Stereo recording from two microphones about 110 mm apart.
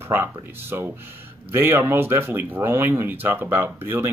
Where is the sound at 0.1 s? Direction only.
20° right (ahead or behind).